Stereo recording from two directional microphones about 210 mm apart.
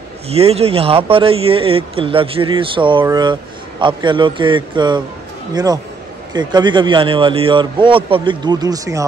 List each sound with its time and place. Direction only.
0.3 s a man's voice: 30° right (ahead or behind)